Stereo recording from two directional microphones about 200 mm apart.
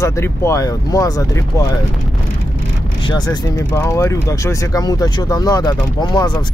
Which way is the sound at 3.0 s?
20° left (ahead or behind).